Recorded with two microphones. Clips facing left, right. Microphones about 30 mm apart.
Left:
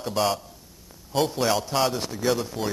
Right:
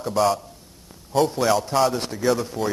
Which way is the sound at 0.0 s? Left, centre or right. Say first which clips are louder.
Right 4 dB; centre.